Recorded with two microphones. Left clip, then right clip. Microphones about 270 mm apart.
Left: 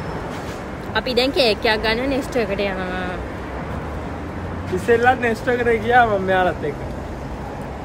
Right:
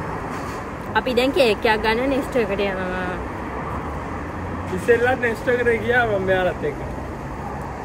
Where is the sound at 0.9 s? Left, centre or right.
Centre.